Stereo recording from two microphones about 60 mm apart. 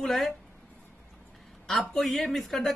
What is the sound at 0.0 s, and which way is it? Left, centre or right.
Speech, centre.